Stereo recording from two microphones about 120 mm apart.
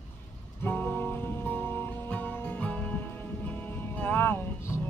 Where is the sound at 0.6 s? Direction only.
15° left (ahead or behind).